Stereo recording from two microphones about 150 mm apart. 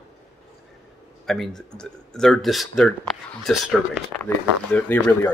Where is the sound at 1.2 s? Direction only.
Centre (ahead or behind).